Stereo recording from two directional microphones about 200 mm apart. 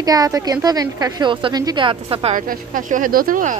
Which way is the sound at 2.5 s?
40° right (ahead or behind).